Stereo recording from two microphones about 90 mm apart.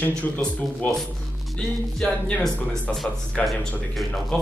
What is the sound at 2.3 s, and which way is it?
Speech, 15° left (ahead or behind).